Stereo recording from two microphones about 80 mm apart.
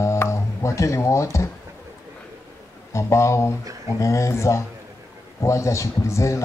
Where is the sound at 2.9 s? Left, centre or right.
Left.